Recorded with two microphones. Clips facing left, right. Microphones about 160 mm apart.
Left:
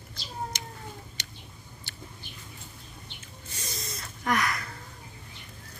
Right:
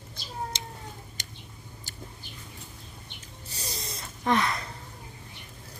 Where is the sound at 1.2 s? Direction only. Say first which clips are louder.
Even; 45° right (ahead or behind).